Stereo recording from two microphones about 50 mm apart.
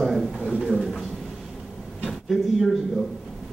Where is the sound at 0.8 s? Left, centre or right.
Centre.